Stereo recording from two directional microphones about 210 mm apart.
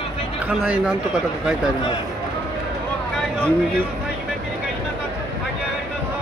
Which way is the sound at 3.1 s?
Centre (ahead or behind).